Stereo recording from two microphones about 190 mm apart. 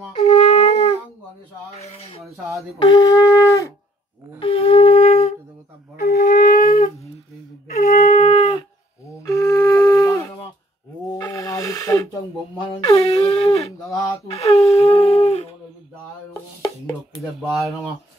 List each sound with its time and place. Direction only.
0.2 s a sound: 35° left (ahead or behind)
2.8 s wind instrument: 20° left (ahead or behind)
4.4 s wind instrument: 30° left (ahead or behind)
5.9 s wind instrument: 55° left (ahead or behind)
7.8 s shofar: 45° left (ahead or behind)
8.2 s shofar: 30° left (ahead or behind)
9.2 s music: 15° left (ahead or behind)
11.1 s snake: 15° left (ahead or behind)
12.5 s a sound: 30° left (ahead or behind)
14.7 s howl: 30° left (ahead or behind)
17.2 s speech: centre (ahead or behind)